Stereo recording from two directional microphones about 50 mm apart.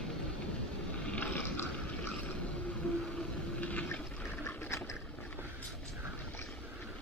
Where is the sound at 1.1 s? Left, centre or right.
Left.